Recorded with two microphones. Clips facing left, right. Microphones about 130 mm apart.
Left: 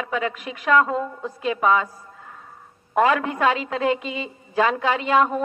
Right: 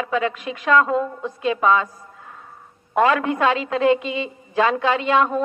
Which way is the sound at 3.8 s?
20° right (ahead or behind).